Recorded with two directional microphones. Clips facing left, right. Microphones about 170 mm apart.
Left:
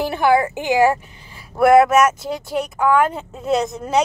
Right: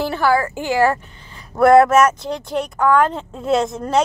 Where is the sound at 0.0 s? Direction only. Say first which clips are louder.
Left 1 dB; 20° left (ahead or behind).